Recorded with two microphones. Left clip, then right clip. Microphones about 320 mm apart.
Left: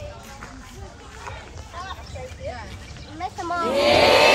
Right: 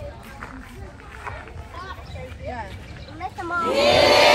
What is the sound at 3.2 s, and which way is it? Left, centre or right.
Children playing, left.